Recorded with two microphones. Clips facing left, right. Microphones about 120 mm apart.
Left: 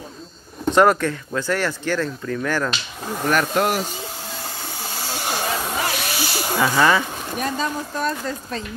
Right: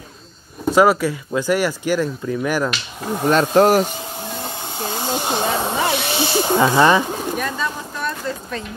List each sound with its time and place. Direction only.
0.7 s speech: 5° right (ahead or behind)
3.5 s speech: 40° right (ahead or behind)
4.4 s hiss: 20° right (ahead or behind)
7.5 s a sound: 35° left (ahead or behind)